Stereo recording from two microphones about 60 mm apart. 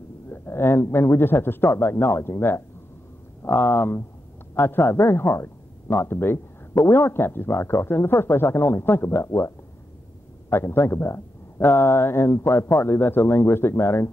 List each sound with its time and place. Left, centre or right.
0.3 s a man's voice: left
10.5 s speech: left